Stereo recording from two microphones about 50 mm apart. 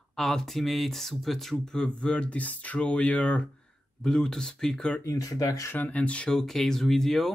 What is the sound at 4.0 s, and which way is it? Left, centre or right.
Speech, centre.